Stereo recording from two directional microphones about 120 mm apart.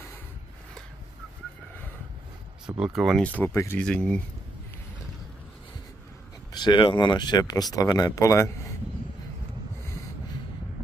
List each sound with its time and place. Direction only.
2.6 s speech: 5° right (ahead or behind)
3.2 s speech: 10° left (ahead or behind)
3.8 s speech: 5° left (ahead or behind)
6.5 s speech: 40° left (ahead or behind)